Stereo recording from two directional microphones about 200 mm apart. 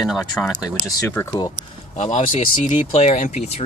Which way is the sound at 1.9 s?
35° left (ahead or behind).